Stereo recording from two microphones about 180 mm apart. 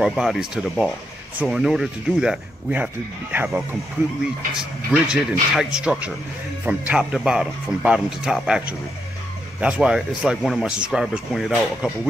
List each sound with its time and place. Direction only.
0.0 s speech: centre (ahead or behind)